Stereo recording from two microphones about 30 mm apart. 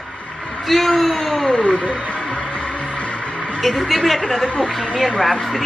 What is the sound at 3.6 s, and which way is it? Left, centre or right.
A woman's voice, centre.